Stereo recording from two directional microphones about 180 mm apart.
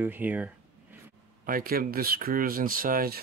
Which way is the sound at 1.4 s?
55° right (ahead or behind).